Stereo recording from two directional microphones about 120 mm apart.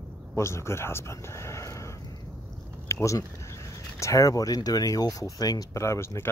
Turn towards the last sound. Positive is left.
turn(degrees=20)  # may be behind; listen again after turning